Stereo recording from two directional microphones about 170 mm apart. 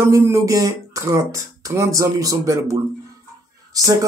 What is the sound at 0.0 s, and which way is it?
Speech, 15° right (ahead or behind).